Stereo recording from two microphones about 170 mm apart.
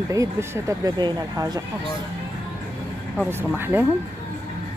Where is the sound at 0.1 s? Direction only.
20° right (ahead or behind).